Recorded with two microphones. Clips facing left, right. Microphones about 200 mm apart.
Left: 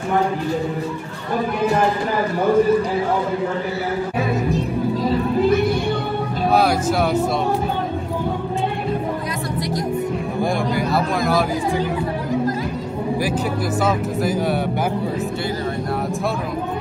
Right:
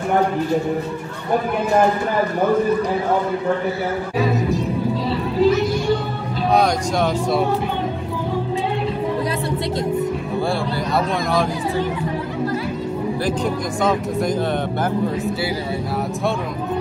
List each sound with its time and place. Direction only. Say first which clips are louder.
5.0 s music: right 1 dB; 55° left (ahead or behind)
6.5 s speech: even; 5° left (ahead or behind)
11.2 s speech: left 1 dB; 5° left (ahead or behind)